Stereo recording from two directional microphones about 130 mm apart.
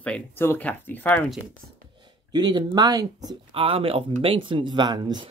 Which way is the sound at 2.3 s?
35° right (ahead or behind).